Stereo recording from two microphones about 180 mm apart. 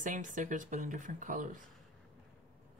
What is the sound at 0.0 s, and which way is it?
Speech, 45° right (ahead or behind).